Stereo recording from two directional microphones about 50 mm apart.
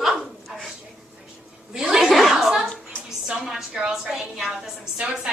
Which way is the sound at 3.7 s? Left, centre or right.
Centre.